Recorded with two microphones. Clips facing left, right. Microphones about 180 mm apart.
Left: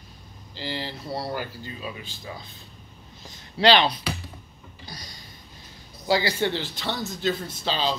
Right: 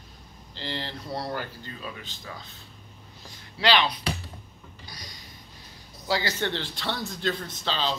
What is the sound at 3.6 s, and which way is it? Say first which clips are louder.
Speech: left 5 dB; 30° left (ahead or behind).